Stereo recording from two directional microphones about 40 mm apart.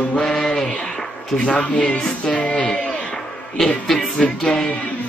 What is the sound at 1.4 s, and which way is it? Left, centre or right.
Music, left.